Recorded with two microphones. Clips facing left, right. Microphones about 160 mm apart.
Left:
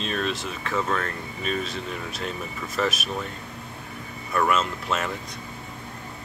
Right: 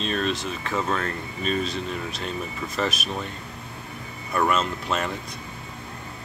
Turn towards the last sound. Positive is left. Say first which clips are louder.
# right 1 dB
turn(degrees=0)  # may be behind; listen again after turning